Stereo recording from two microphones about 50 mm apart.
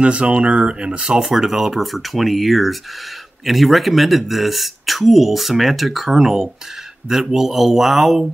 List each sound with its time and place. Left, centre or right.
0.0 s speech: right
1.2 s speech: centre